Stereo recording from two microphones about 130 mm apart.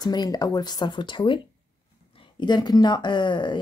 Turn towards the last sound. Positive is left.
turn(degrees=35)  # may be behind; listen again after turning